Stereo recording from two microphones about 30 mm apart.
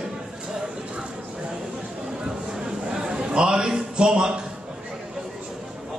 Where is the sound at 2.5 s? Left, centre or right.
Right.